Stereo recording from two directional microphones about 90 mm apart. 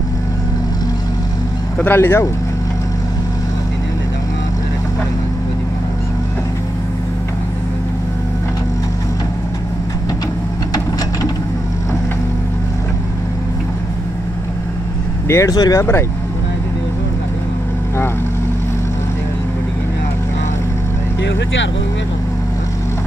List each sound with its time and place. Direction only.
1.8 s speech: 25° left (ahead or behind)
15.2 s speech: 30° left (ahead or behind)
15.5 s speech: 50° left (ahead or behind)
15.8 s speech: 30° left (ahead or behind)